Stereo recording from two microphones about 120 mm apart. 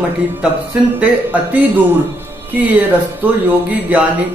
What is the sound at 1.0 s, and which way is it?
Speech, 15° right (ahead or behind).